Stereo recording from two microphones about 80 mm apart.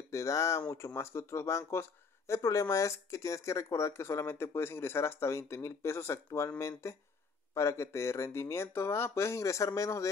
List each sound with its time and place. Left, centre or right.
0.1 s speech: left